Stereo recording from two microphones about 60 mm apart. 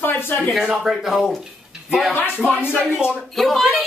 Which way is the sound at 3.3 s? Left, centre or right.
Centre.